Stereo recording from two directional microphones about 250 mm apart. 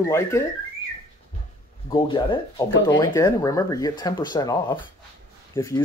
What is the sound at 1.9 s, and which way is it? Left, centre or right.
Speech, centre.